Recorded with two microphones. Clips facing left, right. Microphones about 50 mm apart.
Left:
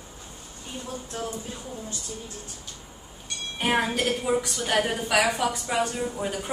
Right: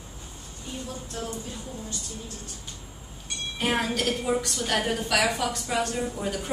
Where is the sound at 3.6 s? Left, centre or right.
Centre.